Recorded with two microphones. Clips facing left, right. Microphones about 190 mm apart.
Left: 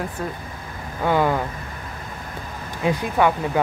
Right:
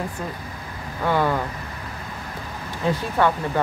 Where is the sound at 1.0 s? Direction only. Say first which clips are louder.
Left 2 dB; 15° left (ahead or behind).